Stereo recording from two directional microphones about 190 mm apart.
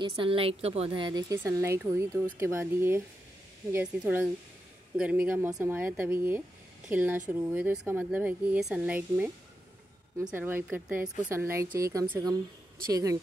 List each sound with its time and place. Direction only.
0.0 s speech: 30° right (ahead or behind)